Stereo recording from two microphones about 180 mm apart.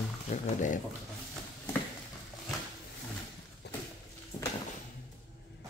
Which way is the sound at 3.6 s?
70° left (ahead or behind).